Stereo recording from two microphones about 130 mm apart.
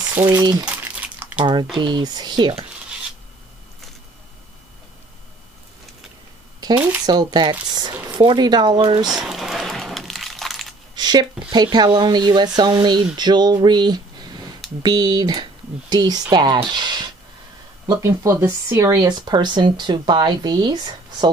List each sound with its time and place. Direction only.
0.4 s speech: 30° right (ahead or behind)
0.7 s crumpling: 10° right (ahead or behind)
1.4 s speech: 35° right (ahead or behind)
7.1 s speech: 30° right (ahead or behind)
9.0 s crumpling: 5° right (ahead or behind)
11.0 s speech: 35° right (ahead or behind)
16.7 s a sound: 35° right (ahead or behind)
18.0 s speech: 20° right (ahead or behind)